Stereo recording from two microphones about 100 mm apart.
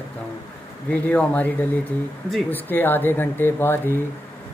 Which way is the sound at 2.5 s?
20° left (ahead or behind).